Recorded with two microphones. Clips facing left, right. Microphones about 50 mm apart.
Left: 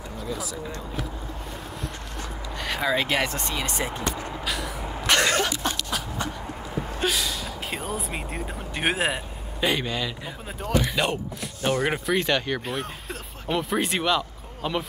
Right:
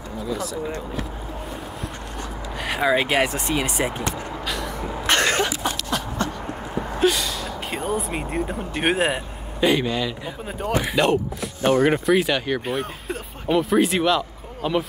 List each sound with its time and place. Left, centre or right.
0.3 s speech: centre
1.8 s a sound: centre
4.5 s vehicle: centre
5.0 s throat clearing: right
5.7 s a sound: centre
7.0 s speech: centre
10.7 s speech: centre
11.0 s speech: centre